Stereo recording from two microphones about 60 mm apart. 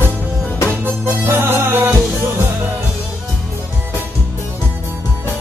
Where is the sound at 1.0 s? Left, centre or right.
Right.